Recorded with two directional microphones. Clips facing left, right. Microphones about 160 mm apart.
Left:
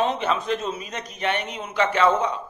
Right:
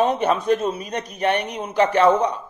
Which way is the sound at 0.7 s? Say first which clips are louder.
Right 5 dB; 35° right (ahead or behind).